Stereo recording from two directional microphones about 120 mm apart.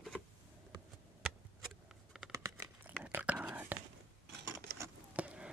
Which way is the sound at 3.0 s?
15° right (ahead or behind).